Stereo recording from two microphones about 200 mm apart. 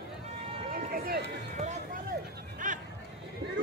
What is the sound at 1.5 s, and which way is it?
Music, 35° right (ahead or behind).